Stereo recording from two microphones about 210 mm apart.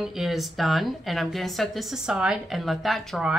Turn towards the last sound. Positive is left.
turn(degrees=0)  # may be behind; listen again after turning